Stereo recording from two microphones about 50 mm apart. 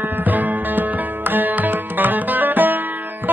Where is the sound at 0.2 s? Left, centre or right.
Right.